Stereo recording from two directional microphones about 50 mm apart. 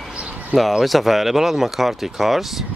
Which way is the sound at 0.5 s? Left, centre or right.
Centre.